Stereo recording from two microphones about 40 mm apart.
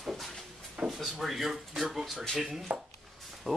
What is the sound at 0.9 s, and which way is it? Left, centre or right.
Drawer open or close, centre.